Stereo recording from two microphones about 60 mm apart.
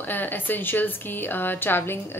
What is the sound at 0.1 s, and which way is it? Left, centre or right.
A woman's voice, left.